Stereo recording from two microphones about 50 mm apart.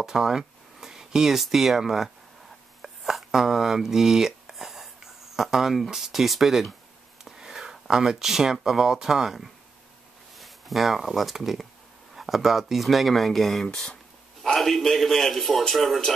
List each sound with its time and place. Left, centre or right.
0.0 s a man's voice: centre